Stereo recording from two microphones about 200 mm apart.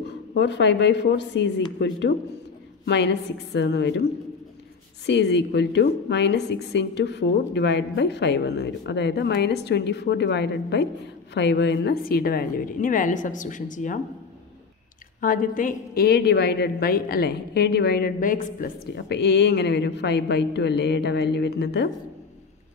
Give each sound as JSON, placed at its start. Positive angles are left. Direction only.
{"t": 0.0, "sound": "a woman's voice", "side_deg": 60}
{"t": 15.1, "sound": "a woman's voice", "side_deg": 45}
{"t": 18.9, "sound": "a woman's voice", "side_deg": 55}